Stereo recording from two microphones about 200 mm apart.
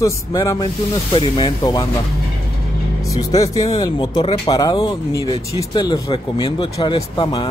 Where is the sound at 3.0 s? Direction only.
15° left (ahead or behind).